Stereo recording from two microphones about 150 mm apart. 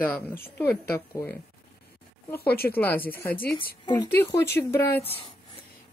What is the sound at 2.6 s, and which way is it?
Speech, 15° left (ahead or behind).